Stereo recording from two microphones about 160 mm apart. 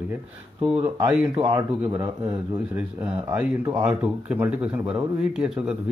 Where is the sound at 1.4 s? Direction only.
15° right (ahead or behind).